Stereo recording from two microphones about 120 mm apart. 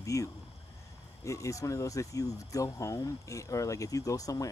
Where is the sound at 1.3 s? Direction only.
25° left (ahead or behind).